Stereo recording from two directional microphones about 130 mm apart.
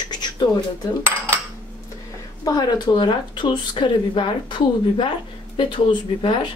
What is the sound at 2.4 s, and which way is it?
Speech, 30° left (ahead or behind).